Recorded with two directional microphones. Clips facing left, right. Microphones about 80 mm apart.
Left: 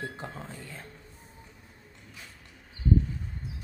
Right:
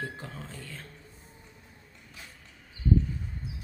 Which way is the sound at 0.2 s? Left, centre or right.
Left.